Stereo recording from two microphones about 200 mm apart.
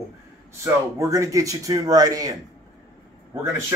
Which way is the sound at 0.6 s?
15° right (ahead or behind).